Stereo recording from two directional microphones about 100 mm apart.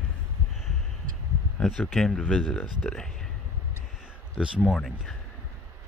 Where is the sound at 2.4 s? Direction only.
15° left (ahead or behind).